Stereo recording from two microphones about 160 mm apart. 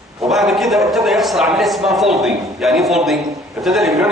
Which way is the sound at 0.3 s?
Centre (ahead or behind).